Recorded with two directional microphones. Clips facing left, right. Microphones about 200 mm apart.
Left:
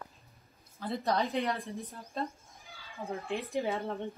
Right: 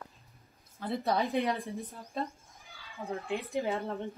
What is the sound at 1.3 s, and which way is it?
Speech, 15° right (ahead or behind).